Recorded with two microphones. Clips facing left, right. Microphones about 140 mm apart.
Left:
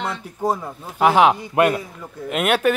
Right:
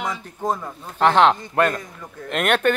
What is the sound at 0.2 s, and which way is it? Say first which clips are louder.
A man's voice: left 2 dB; 10° left (ahead or behind).